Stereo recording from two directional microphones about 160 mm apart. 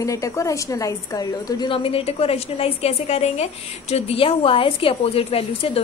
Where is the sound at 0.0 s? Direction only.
20° left (ahead or behind).